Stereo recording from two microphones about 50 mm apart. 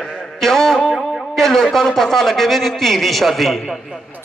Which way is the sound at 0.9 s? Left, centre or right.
Centre.